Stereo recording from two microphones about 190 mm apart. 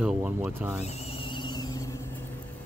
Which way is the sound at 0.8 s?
35° left (ahead or behind).